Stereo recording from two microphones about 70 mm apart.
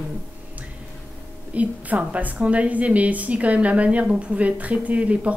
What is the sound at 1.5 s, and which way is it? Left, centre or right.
A woman's voice, right.